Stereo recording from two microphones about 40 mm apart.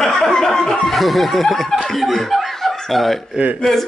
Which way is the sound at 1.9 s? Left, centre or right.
Centre.